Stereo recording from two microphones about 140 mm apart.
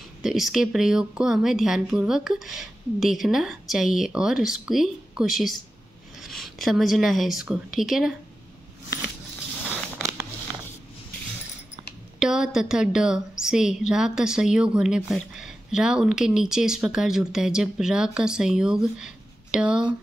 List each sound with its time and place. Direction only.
0.2 s a woman's voice: 5° right (ahead or behind)
10.0 s a sound: 20° right (ahead or behind)
12.2 s a woman's voice: 5° right (ahead or behind)